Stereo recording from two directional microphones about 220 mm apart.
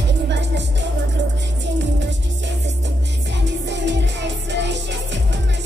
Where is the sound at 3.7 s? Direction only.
55° right (ahead or behind).